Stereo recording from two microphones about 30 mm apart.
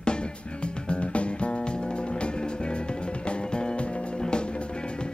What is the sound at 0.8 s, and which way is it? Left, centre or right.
Music, left.